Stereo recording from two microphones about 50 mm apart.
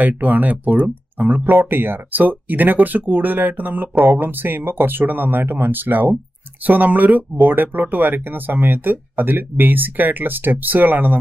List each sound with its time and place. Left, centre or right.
0.0 s speech: right